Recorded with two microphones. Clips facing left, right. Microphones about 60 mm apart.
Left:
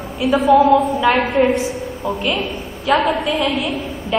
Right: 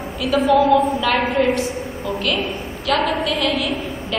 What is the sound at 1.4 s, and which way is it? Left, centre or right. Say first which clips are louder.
A woman's voice: left 3 dB; centre.